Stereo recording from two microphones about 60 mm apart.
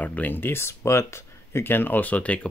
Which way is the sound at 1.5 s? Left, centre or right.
Left.